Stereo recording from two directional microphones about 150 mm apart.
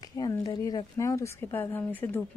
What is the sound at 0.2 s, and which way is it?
Speech, 25° left (ahead or behind).